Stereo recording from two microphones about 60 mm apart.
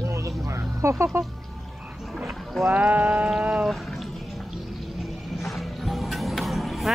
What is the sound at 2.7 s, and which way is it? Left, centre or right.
Speech, right.